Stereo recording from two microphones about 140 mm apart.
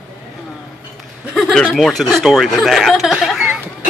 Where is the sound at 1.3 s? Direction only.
Centre (ahead or behind).